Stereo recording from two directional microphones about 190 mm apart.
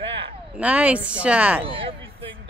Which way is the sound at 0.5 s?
5° right (ahead or behind).